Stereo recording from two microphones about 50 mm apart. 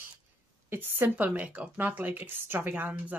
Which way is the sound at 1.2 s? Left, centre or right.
Right.